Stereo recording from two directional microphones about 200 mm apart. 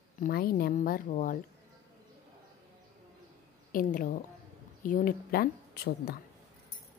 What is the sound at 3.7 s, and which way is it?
Speech, 45° left (ahead or behind).